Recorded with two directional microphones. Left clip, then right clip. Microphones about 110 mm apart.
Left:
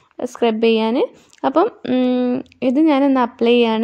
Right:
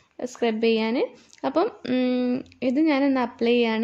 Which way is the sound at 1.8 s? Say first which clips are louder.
Left 6 dB; 35° left (ahead or behind).